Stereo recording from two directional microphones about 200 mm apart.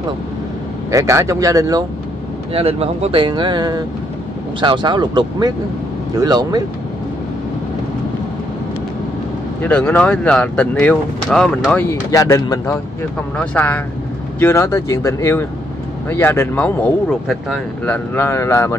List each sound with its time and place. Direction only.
0.9 s speech: 15° right (ahead or behind)
2.5 s speech: 30° right (ahead or behind)
9.6 s speech: 5° left (ahead or behind)